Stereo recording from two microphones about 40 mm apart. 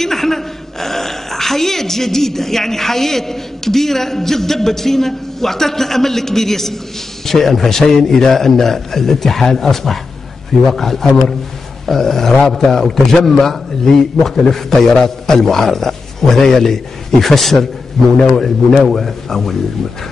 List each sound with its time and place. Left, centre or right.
0.0 s a man's voice: centre